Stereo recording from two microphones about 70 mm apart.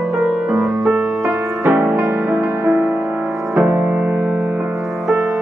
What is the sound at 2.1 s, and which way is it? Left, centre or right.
Music, right.